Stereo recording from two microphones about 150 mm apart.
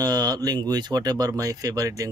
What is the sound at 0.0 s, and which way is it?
Speech, 25° right (ahead or behind).